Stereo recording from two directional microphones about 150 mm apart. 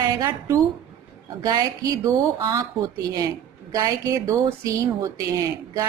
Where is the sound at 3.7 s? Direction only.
25° right (ahead or behind).